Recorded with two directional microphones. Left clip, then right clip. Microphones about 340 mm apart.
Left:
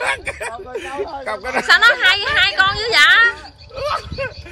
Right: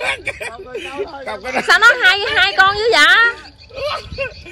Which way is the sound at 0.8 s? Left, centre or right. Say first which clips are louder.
Left 1 dB; left.